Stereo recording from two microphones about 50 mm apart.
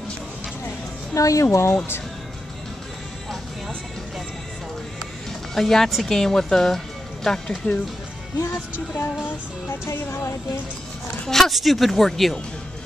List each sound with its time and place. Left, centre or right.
1.1 s speech: left
5.5 s speech: centre
7.2 s speech: left
8.9 s music: left
11.2 s speech: centre